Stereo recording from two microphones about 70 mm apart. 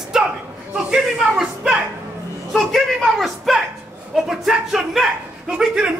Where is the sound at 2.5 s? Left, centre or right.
Centre.